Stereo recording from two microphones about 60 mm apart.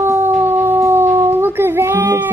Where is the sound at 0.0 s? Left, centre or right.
Right.